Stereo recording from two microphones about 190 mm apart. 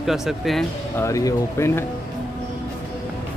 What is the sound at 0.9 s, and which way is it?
Speech, 15° left (ahead or behind).